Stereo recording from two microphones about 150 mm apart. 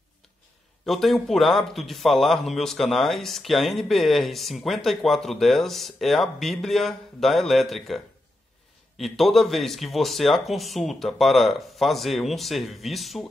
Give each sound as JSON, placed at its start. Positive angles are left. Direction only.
{"t": 0.8, "sound": "a man's voice", "side_deg": 0}